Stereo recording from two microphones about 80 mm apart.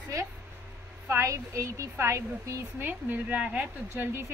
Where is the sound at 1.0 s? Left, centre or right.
Right; by 3.6 s centre.